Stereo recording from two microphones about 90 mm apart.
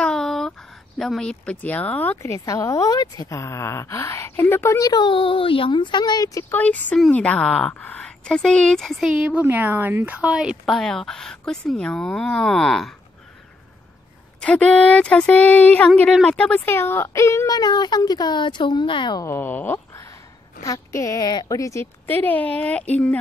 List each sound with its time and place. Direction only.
0.0 s a sound: 5° left (ahead or behind)
0.9 s speech: 5° left (ahead or behind)
2.2 s speech: 35° left (ahead or behind)
4.7 s speech: 45° left (ahead or behind)
5.0 s speech: 80° left; by 6.4 s 45° left (ahead or behind)
6.5 s speech: 15° left (ahead or behind)
9.0 s a woman's voice: 10° right (ahead or behind)
10.6 s speech: 5° left (ahead or behind)
14.4 s speech: 10° left (ahead or behind)
16.6 s speech: 25° left (ahead or behind)
17.5 s speech: 50° left (ahead or behind)
19.2 s speech: 25° left (ahead or behind)
20.6 s speech: 40° left (ahead or behind)
22.0 s speech: 20° left (ahead or behind)